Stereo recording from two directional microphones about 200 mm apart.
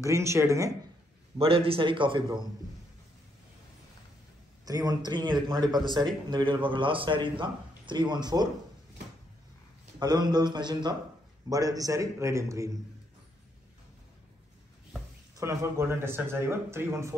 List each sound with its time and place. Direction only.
0.0 s speech: 15° right (ahead or behind)
1.4 s a man's voice: 30° right (ahead or behind)
4.6 s a man's voice: 20° right (ahead or behind)
9.9 s a man's voice: 20° right (ahead or behind)
15.3 s speech: 15° right (ahead or behind)